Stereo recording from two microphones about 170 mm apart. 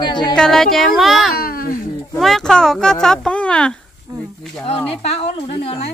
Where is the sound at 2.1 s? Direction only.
5° left (ahead or behind).